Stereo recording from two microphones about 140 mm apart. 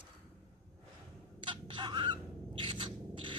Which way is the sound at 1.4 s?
35° right (ahead or behind).